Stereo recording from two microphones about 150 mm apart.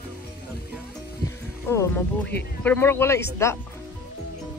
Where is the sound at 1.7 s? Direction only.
15° left (ahead or behind).